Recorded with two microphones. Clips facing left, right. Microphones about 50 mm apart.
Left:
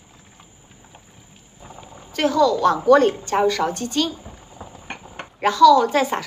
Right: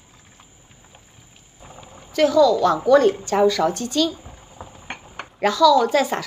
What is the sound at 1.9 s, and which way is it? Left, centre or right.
A woman's voice, left.